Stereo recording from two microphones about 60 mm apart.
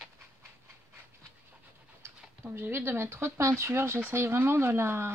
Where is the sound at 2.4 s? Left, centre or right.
Right.